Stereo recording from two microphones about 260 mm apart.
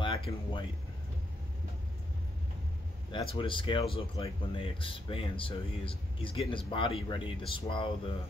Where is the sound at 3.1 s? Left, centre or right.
Centre.